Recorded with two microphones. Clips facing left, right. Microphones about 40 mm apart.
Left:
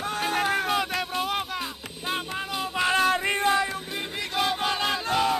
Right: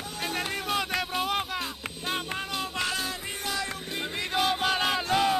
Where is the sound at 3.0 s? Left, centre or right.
Left.